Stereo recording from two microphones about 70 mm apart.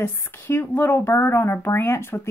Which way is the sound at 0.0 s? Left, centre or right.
Left.